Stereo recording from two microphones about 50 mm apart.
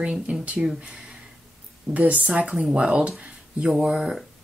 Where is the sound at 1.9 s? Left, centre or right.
Right.